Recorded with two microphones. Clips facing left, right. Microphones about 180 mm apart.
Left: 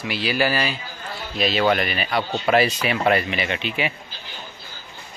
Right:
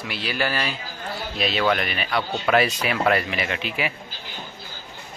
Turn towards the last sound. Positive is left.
turn(degrees=0)  # may be behind; listen again after turning